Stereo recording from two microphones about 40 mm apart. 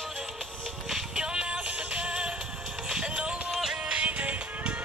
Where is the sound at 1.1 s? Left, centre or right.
Right.